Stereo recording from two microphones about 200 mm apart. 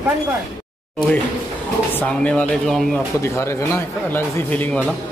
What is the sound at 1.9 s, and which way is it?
Speech, 10° left (ahead or behind).